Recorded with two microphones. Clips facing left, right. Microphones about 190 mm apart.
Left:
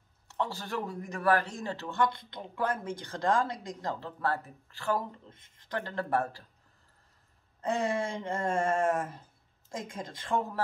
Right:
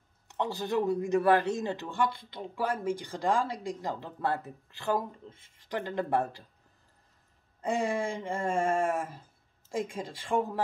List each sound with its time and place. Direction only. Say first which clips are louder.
0.3 s speech: right 4 dB; 20° right (ahead or behind)
7.6 s speech: right 1 dB; 10° right (ahead or behind)